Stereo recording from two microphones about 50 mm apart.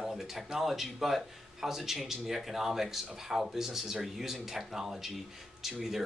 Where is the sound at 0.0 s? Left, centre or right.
Centre.